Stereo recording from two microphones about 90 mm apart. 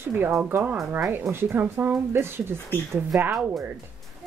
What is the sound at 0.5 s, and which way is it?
Speech, 25° right (ahead or behind).